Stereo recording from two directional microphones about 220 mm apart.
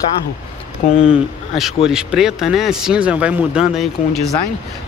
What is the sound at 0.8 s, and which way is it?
Speech, 35° left (ahead or behind).